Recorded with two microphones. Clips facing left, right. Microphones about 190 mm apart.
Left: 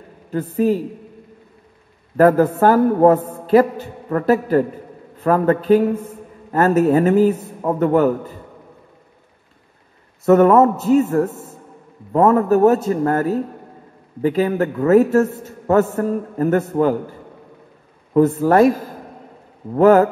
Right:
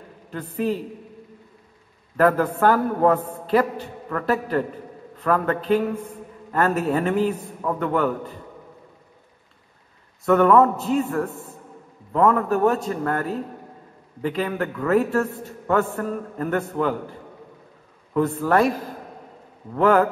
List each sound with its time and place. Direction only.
0.3 s a man's voice: 40° left (ahead or behind)
2.1 s a man's voice: 45° left (ahead or behind)
10.2 s a man's voice: 40° left (ahead or behind)
18.1 s a man's voice: 40° left (ahead or behind)
19.7 s a man's voice: 40° left (ahead or behind)